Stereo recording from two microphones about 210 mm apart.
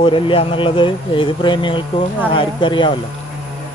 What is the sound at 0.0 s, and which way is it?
Speech, 25° left (ahead or behind).